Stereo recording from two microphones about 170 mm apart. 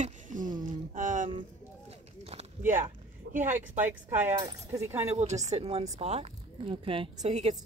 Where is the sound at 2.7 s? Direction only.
50° right (ahead or behind).